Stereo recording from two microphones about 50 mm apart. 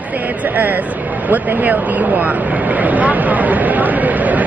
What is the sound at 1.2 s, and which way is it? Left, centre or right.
Speech, right.